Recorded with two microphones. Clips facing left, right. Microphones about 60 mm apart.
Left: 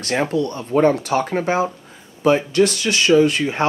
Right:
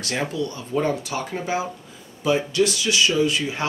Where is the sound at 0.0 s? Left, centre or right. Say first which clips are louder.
Left 6 dB; left.